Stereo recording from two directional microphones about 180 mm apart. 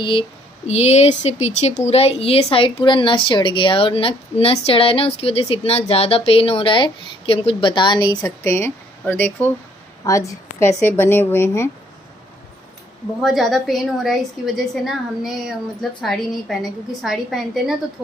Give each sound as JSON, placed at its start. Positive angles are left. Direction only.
{"t": 0.0, "sound": "speech", "side_deg": 30}
{"t": 13.2, "sound": "a woman's voice", "side_deg": 0}